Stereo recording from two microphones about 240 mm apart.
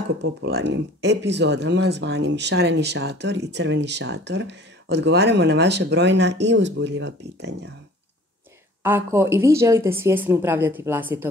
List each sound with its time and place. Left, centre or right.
0.2 s speech: right
8.8 s a woman's voice: centre